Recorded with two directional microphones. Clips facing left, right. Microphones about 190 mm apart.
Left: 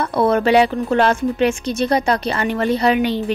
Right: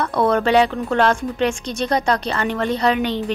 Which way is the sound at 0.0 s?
5° left (ahead or behind).